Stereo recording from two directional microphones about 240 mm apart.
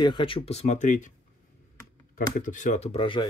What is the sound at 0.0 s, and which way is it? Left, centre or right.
Speech, centre.